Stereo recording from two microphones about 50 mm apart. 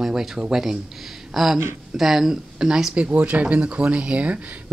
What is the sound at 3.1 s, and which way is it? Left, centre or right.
Speech, right.